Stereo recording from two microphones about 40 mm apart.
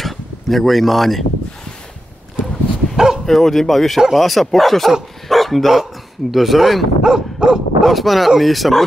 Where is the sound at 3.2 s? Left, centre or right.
Centre.